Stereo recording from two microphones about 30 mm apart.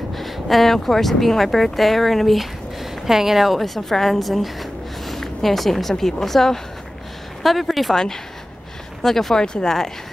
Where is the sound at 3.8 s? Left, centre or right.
Centre.